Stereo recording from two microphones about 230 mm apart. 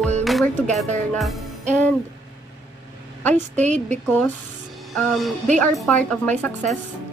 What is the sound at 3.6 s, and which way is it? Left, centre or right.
Speech, right.